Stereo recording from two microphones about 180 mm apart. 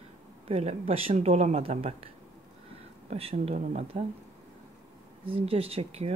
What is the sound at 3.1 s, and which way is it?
Speech, 35° right (ahead or behind).